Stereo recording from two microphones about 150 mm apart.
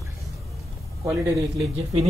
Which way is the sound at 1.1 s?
20° right (ahead or behind).